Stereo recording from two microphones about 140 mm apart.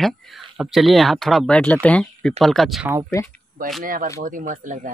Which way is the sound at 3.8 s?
80° right.